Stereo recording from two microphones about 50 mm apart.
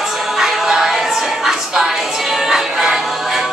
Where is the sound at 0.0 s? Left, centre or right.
Centre.